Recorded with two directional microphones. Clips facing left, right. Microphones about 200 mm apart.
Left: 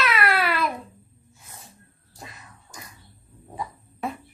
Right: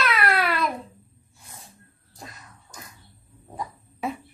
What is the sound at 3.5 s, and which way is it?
Beatboxing, centre (ahead or behind).